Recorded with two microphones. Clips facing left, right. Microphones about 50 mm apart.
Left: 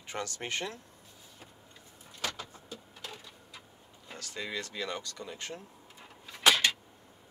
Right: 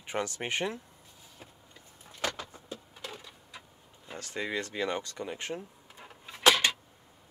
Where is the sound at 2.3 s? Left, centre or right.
Centre.